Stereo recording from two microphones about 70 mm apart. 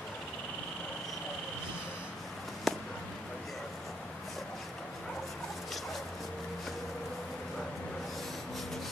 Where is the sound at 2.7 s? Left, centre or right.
Centre.